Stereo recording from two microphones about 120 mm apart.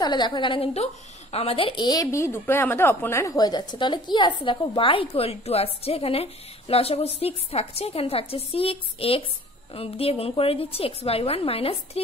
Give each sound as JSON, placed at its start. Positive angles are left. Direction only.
{"t": 0.0, "sound": "a woman's voice", "side_deg": 35}
{"t": 1.3, "sound": "a woman's voice", "side_deg": 55}
{"t": 1.9, "sound": "a woman's voice", "side_deg": 30}